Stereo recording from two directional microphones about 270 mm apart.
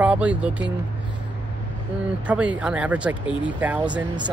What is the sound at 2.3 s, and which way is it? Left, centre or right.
Speech, centre.